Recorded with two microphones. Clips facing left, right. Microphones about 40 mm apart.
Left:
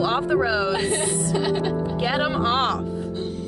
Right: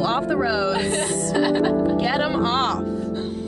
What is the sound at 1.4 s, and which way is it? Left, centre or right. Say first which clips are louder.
Speech: right 8 dB; centre.